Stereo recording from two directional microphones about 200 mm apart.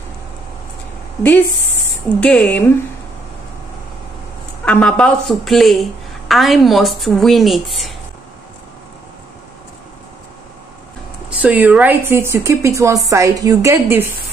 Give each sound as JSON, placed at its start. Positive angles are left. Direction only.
{"t": 2.1, "sound": "a woman's voice", "side_deg": 5}
{"t": 4.6, "sound": "a woman's voice", "side_deg": 5}
{"t": 11.2, "sound": "speech", "side_deg": -10}